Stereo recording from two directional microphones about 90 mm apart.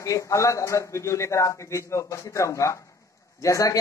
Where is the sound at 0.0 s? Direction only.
35° left (ahead or behind).